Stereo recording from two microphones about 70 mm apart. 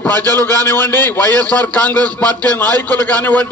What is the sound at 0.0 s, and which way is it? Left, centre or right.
Speech, left.